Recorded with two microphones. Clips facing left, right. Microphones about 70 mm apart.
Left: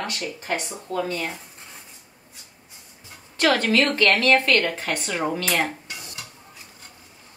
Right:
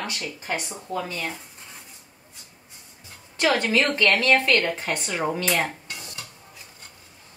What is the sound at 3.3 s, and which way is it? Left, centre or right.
A woman's voice, right.